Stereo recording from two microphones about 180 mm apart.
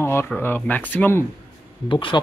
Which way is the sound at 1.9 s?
30° left (ahead or behind).